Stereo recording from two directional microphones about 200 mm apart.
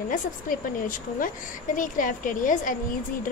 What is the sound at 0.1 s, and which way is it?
A woman's voice, 40° left (ahead or behind).